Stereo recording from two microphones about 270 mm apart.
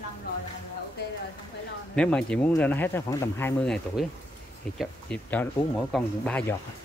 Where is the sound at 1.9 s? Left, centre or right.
Centre.